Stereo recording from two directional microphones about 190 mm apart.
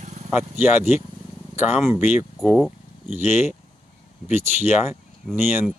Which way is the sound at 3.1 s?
10° right (ahead or behind).